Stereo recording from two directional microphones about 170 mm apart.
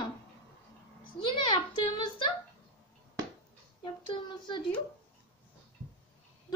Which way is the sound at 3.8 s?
30° left (ahead or behind).